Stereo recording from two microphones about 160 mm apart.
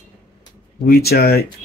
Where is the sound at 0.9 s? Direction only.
75° left (ahead or behind).